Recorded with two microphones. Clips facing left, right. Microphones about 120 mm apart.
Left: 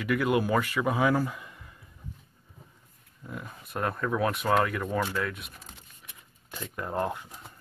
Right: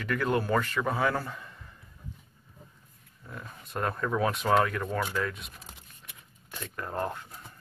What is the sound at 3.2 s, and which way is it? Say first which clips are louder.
Speech: left 3 dB; 10° left (ahead or behind).